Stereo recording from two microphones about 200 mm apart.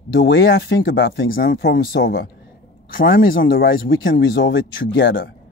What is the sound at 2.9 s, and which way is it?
Speech, 45° left (ahead or behind).